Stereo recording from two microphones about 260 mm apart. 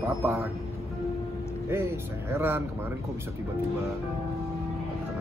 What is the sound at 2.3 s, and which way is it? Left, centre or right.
Speech, centre.